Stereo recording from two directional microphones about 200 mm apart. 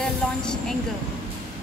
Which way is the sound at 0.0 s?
5° left (ahead or behind).